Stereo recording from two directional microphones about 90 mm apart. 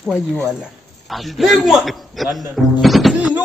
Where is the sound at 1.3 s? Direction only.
Centre (ahead or behind).